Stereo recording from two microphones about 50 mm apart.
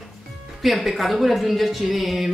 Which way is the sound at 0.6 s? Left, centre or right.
Centre.